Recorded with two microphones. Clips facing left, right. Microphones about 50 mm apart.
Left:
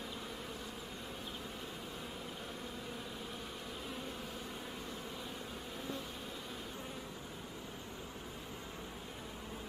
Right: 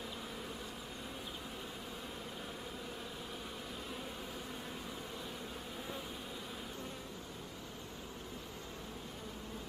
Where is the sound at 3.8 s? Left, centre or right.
Centre.